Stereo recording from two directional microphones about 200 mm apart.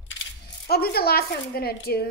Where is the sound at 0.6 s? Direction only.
50° left (ahead or behind).